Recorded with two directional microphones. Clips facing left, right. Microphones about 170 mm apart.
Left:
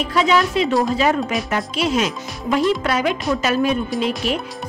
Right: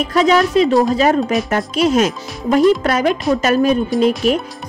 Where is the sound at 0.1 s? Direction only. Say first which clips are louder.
Right 5 dB; 40° right (ahead or behind).